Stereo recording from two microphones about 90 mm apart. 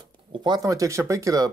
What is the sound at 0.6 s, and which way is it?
Speech, 35° right (ahead or behind).